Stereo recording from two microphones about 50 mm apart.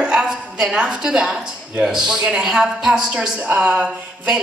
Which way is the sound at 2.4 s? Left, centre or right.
Centre.